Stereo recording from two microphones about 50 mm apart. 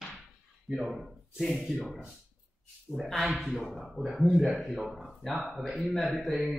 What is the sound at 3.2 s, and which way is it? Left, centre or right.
Speech, centre.